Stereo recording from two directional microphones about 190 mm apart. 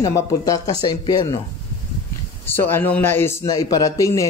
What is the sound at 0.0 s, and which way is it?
Speech, 20° left (ahead or behind).